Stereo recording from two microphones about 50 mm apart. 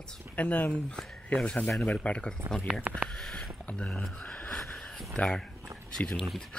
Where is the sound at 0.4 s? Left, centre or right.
Left.